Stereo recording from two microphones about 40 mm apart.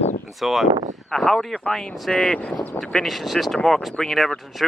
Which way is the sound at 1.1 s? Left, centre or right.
Centre.